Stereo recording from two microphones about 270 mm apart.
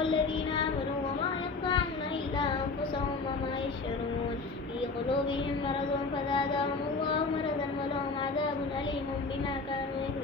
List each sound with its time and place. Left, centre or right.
6.3 s carnatic music: centre